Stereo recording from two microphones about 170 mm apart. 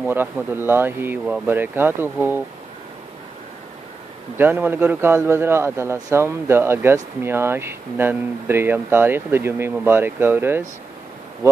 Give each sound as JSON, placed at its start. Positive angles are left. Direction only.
{"t": 0.0, "sound": "speech", "side_deg": -10}
{"t": 4.4, "sound": "speech", "side_deg": -10}